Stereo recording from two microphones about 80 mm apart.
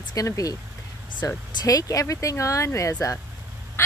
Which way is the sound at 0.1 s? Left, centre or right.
Left.